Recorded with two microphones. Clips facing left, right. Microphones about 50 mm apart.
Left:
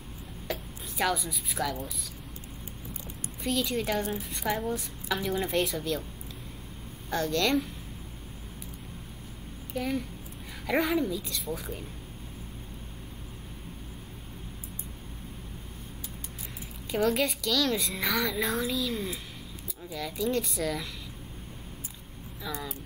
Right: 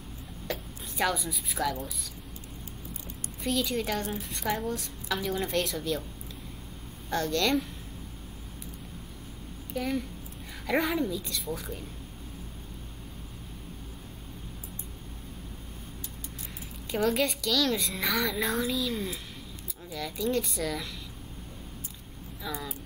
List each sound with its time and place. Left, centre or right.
0.5 s a woman's voice: centre
3.4 s a woman's voice: centre
7.1 s a woman's voice: centre
9.8 s a woman's voice: centre
16.9 s a woman's voice: centre
22.4 s a woman's voice: centre